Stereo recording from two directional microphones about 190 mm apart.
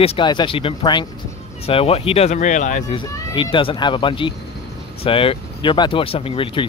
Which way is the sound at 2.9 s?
25° left (ahead or behind).